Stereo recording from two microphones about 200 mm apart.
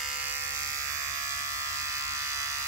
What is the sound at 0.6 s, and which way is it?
Electric shaver, 15° right (ahead or behind).